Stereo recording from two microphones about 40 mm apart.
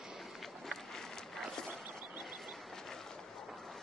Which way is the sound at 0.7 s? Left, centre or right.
Centre.